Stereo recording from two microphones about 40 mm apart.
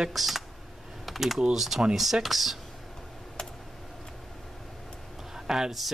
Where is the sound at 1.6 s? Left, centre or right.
Centre.